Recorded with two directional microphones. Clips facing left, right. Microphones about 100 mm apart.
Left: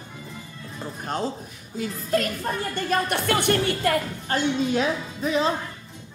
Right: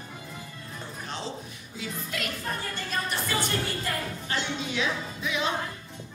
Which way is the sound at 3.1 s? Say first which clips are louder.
Left 7 dB; 65° left (ahead or behind).